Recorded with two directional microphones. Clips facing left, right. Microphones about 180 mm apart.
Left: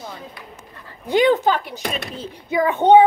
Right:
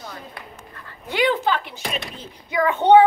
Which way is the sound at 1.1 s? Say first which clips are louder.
Left 5 dB; 45° left (ahead or behind).